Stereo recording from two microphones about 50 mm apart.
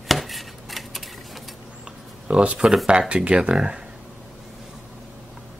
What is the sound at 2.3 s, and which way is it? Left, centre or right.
Speech, right.